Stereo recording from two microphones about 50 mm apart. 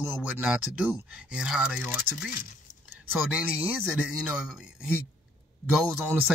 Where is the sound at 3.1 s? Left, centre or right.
Right.